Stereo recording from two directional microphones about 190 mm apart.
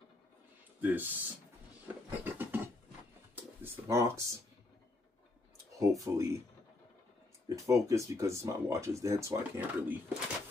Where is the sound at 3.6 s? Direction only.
15° right (ahead or behind).